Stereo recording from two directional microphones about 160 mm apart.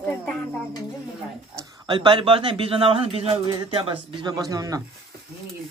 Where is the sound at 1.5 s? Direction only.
25° right (ahead or behind).